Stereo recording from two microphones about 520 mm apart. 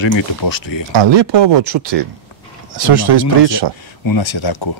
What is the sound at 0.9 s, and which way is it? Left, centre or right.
Speech, right.